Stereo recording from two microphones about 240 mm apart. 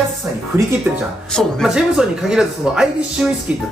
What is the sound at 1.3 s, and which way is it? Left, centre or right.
A man's voice, centre.